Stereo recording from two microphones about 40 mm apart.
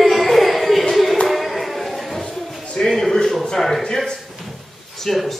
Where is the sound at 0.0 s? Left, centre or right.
Centre.